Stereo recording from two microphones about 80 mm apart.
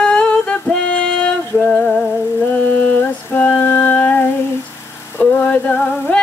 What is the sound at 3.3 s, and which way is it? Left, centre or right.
Music, left.